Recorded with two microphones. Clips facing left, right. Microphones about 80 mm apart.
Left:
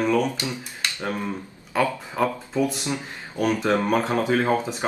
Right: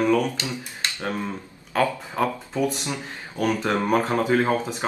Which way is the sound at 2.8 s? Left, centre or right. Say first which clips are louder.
Left 2 dB; left.